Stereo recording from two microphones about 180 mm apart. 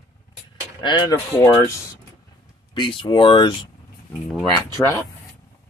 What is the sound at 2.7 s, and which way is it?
Speech, 30° left (ahead or behind).